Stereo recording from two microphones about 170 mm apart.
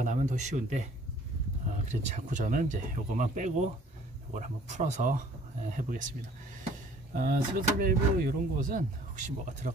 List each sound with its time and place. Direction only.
0.0 s speech: 45° right (ahead or behind)
1.9 s speech: 45° right (ahead or behind)
7.2 s speech: 60° right (ahead or behind)